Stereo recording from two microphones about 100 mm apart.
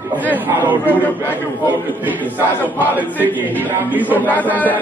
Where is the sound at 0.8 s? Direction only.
20° left (ahead or behind).